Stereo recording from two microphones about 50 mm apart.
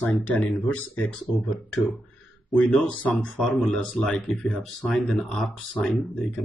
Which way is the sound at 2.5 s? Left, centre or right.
Left.